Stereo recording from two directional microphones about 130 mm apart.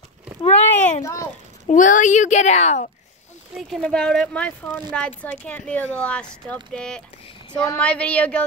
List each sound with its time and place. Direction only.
0.5 s a sound: 60° left (ahead or behind)
1.7 s a woman's voice: 85° left; by 2.9 s 60° left (ahead or behind)
3.7 s speech: 5° left (ahead or behind)